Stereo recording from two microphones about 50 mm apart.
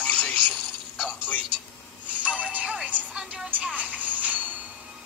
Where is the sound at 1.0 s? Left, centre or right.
Left.